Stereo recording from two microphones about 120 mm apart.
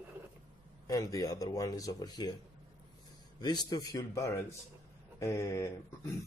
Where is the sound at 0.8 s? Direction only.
30° left (ahead or behind).